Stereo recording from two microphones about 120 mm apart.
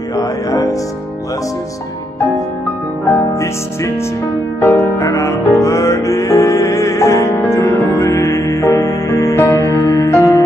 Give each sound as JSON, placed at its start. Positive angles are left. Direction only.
{"t": 0.1, "sound": "music", "side_deg": 30}
{"t": 3.3, "sound": "music", "side_deg": 25}